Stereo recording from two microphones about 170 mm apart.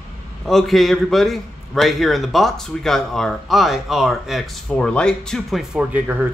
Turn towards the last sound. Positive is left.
turn(degrees=-10)  # may be behind; listen again after turning